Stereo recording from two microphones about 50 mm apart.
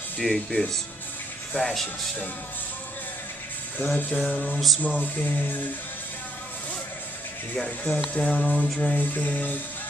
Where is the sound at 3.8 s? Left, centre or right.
Left.